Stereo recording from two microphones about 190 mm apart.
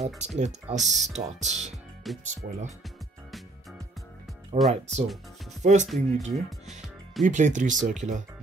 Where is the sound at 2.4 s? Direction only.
55° right (ahead or behind).